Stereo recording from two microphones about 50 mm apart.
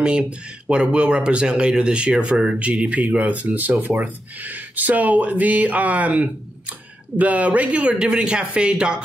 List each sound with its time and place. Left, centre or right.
0.0 s speech: right
2.6 s speech: right